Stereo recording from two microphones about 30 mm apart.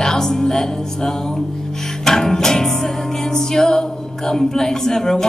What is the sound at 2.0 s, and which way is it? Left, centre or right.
Music, centre.